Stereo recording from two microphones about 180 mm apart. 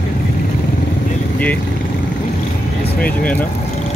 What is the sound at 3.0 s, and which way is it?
Speech, 5° left (ahead or behind).